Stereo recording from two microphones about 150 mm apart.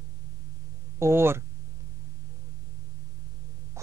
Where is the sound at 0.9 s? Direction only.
15° right (ahead or behind).